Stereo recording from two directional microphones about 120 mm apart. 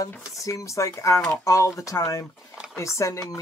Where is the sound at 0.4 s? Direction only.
25° left (ahead or behind).